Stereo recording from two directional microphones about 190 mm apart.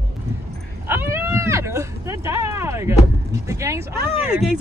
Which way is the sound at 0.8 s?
10° right (ahead or behind).